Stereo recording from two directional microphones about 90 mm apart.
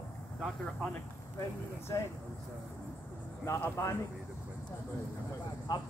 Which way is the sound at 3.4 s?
35° left (ahead or behind).